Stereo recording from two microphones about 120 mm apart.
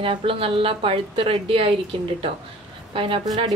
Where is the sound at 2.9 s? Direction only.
50° right (ahead or behind).